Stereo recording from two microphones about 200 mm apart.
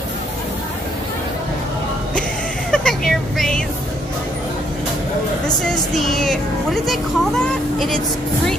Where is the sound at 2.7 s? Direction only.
5° left (ahead or behind).